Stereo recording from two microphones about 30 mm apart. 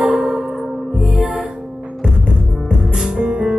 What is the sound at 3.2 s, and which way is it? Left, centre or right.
Music, right.